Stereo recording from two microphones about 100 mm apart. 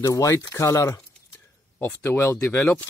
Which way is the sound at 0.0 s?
30° left (ahead or behind).